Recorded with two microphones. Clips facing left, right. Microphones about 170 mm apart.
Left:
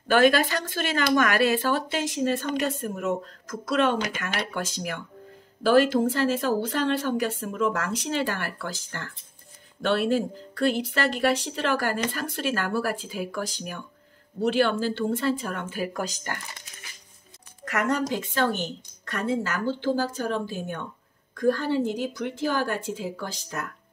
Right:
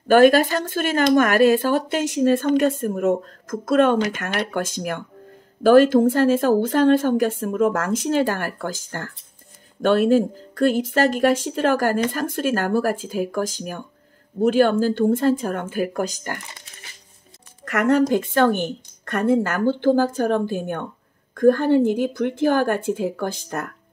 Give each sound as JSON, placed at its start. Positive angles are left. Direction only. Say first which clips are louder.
{"t": 0.1, "sound": "a woman's voice", "louder": "right 6 dB", "side_deg": -45}
{"t": 17.6, "sound": "a woman's voice", "louder": "right 8 dB", "side_deg": -55}